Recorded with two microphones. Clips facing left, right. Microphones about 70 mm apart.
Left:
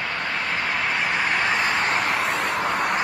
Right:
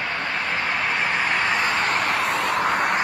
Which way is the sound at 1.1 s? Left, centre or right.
Right.